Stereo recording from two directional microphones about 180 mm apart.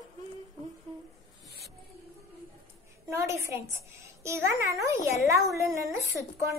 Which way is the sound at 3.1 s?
15° right (ahead or behind).